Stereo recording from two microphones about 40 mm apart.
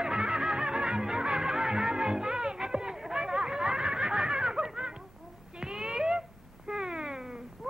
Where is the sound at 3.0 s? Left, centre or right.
Centre.